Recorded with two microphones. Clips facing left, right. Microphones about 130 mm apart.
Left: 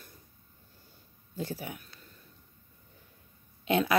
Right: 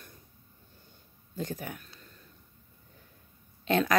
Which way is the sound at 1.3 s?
10° left (ahead or behind).